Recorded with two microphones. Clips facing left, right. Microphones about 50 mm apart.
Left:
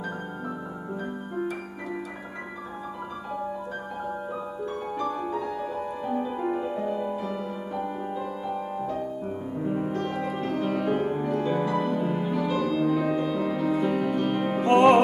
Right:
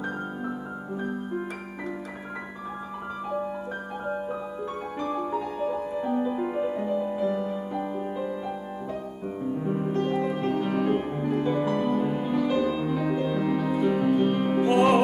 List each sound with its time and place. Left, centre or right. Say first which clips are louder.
6.4 s music: even; centre
9.9 s music: right 3 dB; centre
14.6 s music: left 3 dB; left